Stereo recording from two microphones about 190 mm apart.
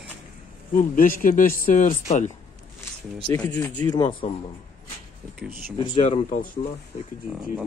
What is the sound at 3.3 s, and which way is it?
Speech, 10° left (ahead or behind).